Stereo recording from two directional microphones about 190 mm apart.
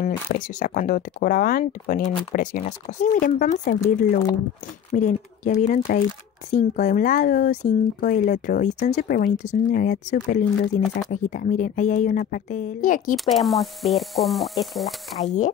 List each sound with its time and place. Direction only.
0.3 s speech: 45° left (ahead or behind)
4.9 s speech: 40° left (ahead or behind)
13.1 s speech: centre (ahead or behind)
15.2 s speech: 40° left (ahead or behind)